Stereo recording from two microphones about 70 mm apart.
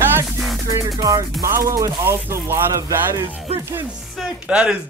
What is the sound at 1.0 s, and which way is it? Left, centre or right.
Music, right.